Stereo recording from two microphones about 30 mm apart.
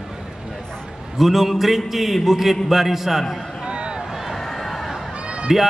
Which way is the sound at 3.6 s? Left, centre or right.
Right.